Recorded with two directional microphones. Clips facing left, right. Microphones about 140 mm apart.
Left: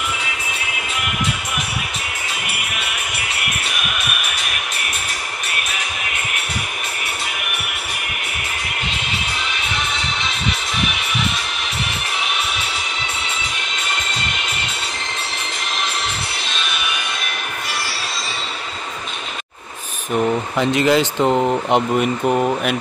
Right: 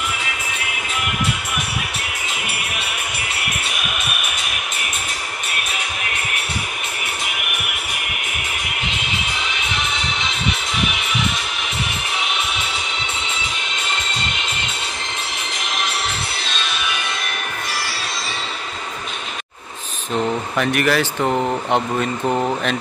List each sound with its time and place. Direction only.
20.2 s speech: 15° left (ahead or behind)
22.2 s speech: 5° left (ahead or behind)